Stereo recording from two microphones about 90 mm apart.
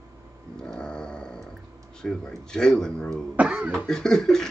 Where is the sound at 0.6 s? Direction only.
10° left (ahead or behind).